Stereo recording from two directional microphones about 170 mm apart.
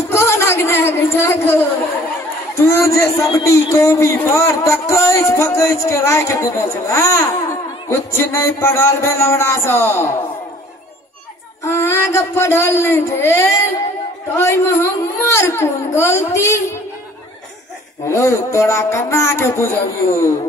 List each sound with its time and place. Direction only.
0.1 s a sound: 15° left (ahead or behind)
2.7 s speech: 15° left (ahead or behind)
11.6 s speech: 15° left (ahead or behind)
18.0 s speech: 15° left (ahead or behind)